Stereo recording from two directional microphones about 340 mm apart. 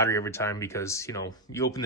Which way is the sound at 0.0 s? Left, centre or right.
Centre.